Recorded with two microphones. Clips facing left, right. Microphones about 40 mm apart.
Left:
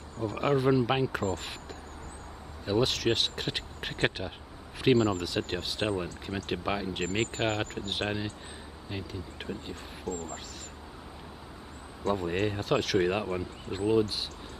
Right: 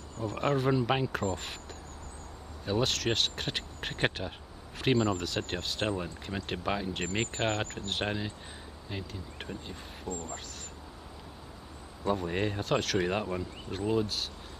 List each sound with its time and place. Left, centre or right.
0.4 s speech: centre
2.6 s speech: centre
7.9 s speech: centre
10.1 s speech: right
12.1 s speech: centre